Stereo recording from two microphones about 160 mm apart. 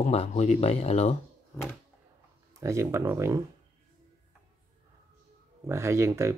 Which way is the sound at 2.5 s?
20° right (ahead or behind).